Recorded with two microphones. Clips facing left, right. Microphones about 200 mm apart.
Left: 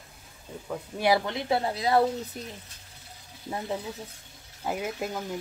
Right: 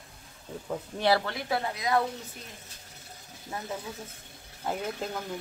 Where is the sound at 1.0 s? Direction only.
15° left (ahead or behind); by 2.0 s 30° left (ahead or behind).